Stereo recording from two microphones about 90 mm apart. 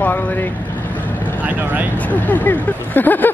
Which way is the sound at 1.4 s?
20° right (ahead or behind).